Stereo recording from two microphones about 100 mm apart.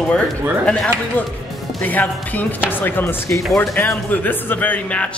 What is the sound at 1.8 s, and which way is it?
Speech, 15° left (ahead or behind).